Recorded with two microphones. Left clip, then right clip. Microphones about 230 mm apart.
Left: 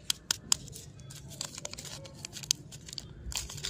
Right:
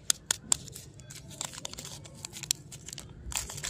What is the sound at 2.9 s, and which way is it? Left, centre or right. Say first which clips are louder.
Crunch: right 1 dB; centre.